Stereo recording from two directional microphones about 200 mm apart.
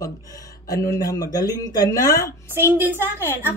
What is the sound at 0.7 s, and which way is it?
Speech, 15° left (ahead or behind).